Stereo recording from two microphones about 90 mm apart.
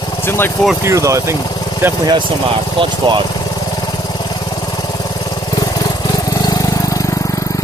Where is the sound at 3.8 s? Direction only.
45° left (ahead or behind).